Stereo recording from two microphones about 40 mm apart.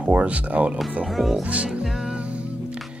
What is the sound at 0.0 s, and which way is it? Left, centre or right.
Speech, right.